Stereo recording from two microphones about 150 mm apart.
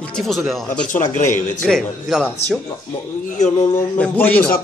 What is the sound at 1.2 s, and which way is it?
Speech, 55° left (ahead or behind).